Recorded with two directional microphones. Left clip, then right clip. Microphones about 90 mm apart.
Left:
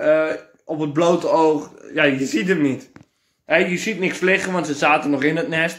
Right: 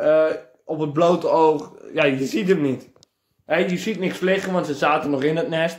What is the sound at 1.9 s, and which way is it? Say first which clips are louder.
Speech: left 2 dB; 20° right (ahead or behind).